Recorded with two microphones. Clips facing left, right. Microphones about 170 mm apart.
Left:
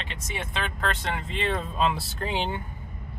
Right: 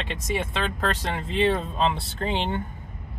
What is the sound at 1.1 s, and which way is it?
Speech, 30° right (ahead or behind).